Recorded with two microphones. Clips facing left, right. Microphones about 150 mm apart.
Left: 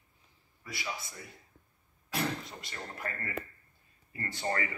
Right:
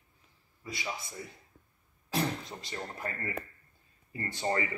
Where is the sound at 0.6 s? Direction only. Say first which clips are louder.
Right 1 dB; 20° right (ahead or behind).